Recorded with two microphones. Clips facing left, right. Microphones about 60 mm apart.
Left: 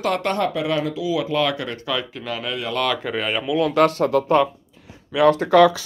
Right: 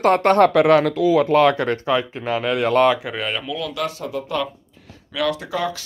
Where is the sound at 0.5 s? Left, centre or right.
Right.